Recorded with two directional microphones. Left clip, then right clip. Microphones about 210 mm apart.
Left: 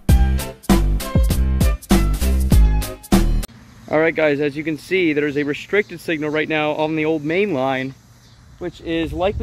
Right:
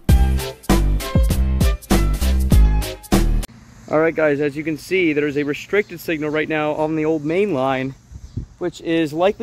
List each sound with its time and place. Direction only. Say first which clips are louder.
0.1 s music: right 1 dB; centre (ahead or behind)
3.9 s speech: even; 10° right (ahead or behind)
8.5 s speech: right 3 dB; 30° right (ahead or behind)